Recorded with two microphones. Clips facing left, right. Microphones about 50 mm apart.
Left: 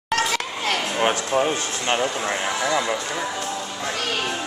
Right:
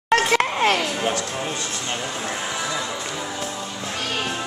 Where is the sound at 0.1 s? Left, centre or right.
Right.